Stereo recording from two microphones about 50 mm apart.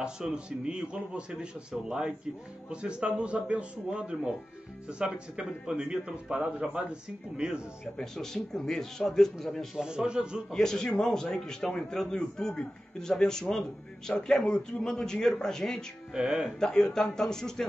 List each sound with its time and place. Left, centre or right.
0.0 s a man's voice: centre
8.0 s a man's voice: centre
9.8 s a man's voice: centre
10.5 s a man's voice: centre
16.1 s a man's voice: centre
16.5 s a man's voice: centre